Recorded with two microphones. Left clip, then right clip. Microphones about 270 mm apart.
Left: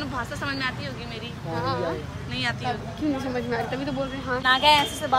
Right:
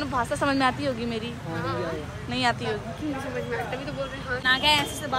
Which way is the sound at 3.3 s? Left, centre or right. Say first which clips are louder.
Left 2 dB; left.